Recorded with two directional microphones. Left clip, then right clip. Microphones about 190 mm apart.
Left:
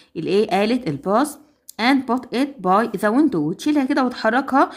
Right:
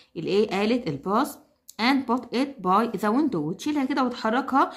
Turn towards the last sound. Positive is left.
turn(degrees=25)  # may be behind; listen again after turning